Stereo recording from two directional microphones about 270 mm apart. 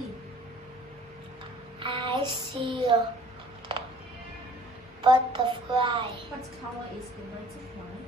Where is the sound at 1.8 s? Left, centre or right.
Centre.